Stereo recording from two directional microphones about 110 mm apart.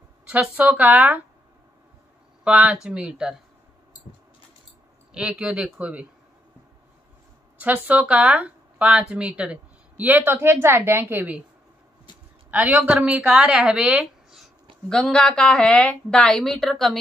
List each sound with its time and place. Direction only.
0.3 s speech: 15° right (ahead or behind)
2.4 s speech: 10° right (ahead or behind)
5.1 s speech: 5° right (ahead or behind)
7.5 s speech: 15° right (ahead or behind)
12.4 s speech: 10° right (ahead or behind)
14.9 s a woman's voice: 5° left (ahead or behind)